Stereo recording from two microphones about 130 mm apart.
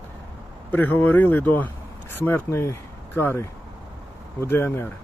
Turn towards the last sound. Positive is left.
turn(degrees=20)  # may be behind; listen again after turning